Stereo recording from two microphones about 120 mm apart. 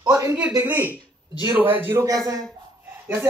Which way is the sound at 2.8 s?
15° right (ahead or behind).